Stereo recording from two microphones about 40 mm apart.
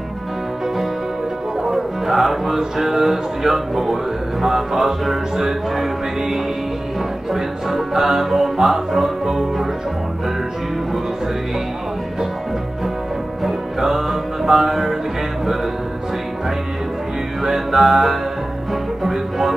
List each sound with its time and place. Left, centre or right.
1.6 s music: centre
7.3 s music: centre
13.4 s music: centre
17.4 s music: centre